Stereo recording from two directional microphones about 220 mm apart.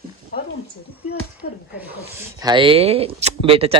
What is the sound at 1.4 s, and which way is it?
Speech, 50° left (ahead or behind).